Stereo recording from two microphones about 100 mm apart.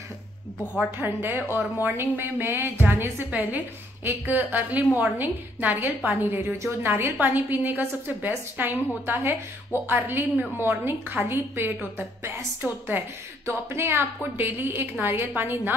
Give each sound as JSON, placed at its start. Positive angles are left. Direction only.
{"t": 0.9, "sound": "a woman's voice", "side_deg": -20}